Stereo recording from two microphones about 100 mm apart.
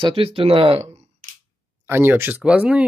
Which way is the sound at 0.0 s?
65° right (ahead or behind).